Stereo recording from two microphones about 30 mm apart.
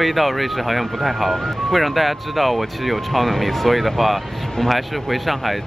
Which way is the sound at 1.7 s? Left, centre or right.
Centre.